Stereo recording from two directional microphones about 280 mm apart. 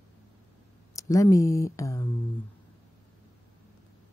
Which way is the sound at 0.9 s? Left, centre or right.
Centre.